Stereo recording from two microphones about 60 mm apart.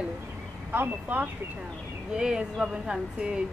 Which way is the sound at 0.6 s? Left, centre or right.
Right.